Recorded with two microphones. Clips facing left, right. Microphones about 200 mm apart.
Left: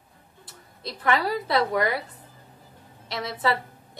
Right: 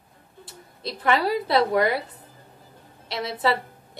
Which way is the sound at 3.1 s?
30° right (ahead or behind).